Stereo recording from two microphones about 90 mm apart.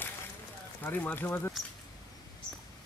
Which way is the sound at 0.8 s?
20° left (ahead or behind).